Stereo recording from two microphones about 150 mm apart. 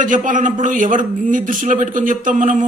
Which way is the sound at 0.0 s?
60° right (ahead or behind).